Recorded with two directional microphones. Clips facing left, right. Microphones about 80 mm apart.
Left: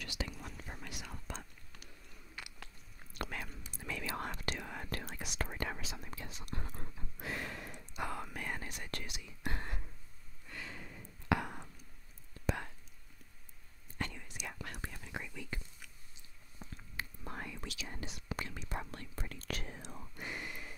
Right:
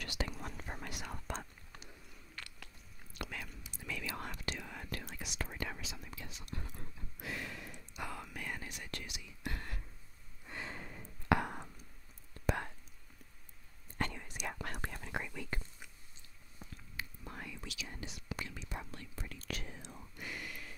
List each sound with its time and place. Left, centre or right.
0.0 s whispering: right
2.4 s biting: centre
3.2 s whispering: left
9.5 s whispering: left
10.4 s a sound: right
13.9 s whispering: right
16.9 s whispering: left
20.2 s a sound: left